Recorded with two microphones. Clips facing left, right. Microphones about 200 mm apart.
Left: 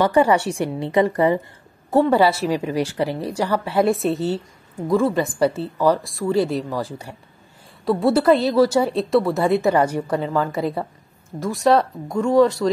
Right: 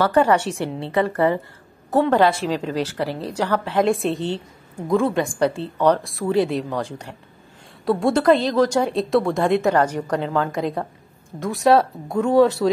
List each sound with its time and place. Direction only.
0.0 s a woman's voice: 10° left (ahead or behind)